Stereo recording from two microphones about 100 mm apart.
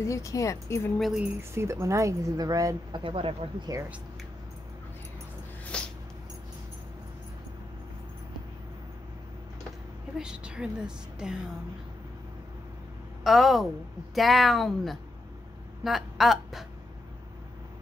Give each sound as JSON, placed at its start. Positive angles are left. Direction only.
{"t": 0.0, "sound": "speech", "side_deg": 30}
{"t": 0.9, "sound": "speech", "side_deg": 0}
{"t": 1.5, "sound": "speech", "side_deg": -30}
{"t": 2.9, "sound": "speech", "side_deg": -60}
{"t": 5.7, "sound": "a sound", "side_deg": 10}
{"t": 10.1, "sound": "a woman's voice", "side_deg": -10}
{"t": 13.2, "sound": "speech", "side_deg": 0}